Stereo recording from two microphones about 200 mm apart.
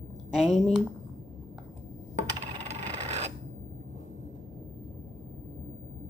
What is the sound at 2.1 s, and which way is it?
Coin, 35° right (ahead or behind).